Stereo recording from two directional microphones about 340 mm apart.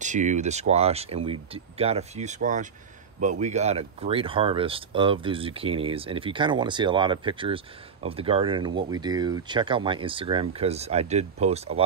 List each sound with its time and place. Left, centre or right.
0.0 s speech: right